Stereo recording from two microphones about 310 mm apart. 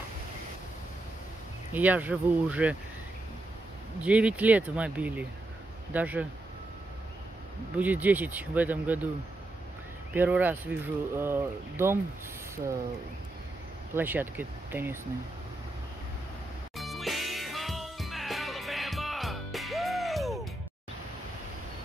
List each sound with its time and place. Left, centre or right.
1.7 s a man's voice: centre
4.0 s a man's voice: centre
7.7 s a man's voice: centre
10.1 s speech: centre
13.9 s speech: centre
16.7 s music: centre